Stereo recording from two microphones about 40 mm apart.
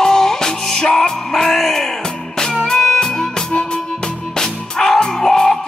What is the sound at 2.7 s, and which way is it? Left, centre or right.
Music, centre.